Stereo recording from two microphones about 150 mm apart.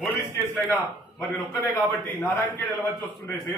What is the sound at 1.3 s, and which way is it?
A man's voice, 10° left (ahead or behind).